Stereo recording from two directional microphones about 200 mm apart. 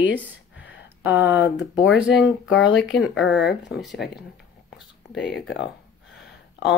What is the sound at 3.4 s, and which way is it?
Speech, 55° left (ahead or behind).